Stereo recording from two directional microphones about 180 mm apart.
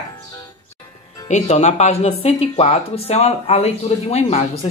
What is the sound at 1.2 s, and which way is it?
Speech, 40° left (ahead or behind).